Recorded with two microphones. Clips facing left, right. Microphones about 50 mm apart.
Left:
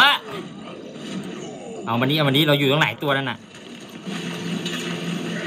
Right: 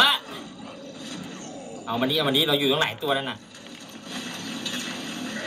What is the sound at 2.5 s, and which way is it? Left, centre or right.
Speech, left.